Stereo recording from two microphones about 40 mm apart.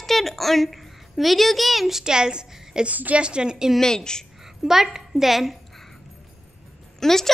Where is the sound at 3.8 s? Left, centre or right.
Centre.